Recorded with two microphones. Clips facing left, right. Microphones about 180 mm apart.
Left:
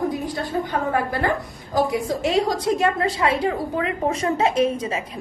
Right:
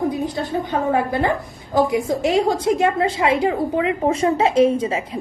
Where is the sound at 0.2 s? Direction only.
20° right (ahead or behind).